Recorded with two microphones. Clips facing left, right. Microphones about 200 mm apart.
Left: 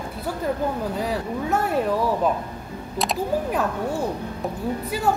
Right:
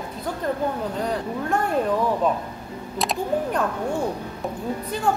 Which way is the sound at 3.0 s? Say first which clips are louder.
Even; centre (ahead or behind).